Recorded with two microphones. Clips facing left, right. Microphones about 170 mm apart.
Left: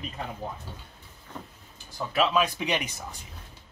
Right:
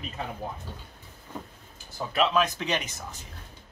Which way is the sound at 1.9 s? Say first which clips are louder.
Even; centre (ahead or behind).